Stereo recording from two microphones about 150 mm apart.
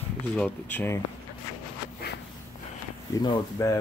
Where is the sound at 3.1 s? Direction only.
25° left (ahead or behind).